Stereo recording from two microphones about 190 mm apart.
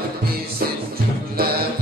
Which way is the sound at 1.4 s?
55° right (ahead or behind).